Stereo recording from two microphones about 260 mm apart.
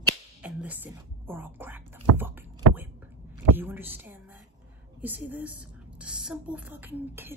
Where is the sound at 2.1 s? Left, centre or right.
Right.